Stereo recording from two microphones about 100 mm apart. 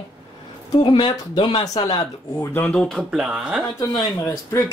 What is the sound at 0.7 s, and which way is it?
Speech, 50° left (ahead or behind).